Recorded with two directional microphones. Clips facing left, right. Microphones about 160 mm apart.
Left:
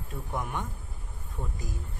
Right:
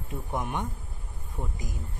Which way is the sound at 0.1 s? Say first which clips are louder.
Right 2 dB; 20° right (ahead or behind).